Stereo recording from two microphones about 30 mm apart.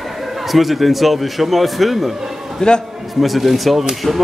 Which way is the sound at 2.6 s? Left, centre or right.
Left.